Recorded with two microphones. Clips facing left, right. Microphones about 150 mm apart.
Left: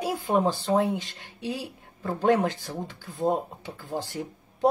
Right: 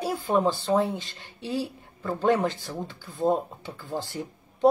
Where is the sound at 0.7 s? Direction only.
Centre (ahead or behind).